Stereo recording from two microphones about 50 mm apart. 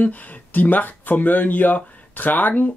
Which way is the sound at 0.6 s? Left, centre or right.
Left.